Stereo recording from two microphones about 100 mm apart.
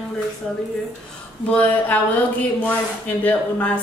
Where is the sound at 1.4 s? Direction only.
20° left (ahead or behind).